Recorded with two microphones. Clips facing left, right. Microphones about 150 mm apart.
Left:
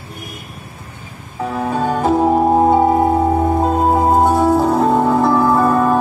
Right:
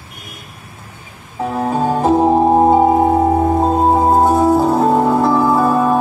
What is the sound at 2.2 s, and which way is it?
Music, 25° right (ahead or behind).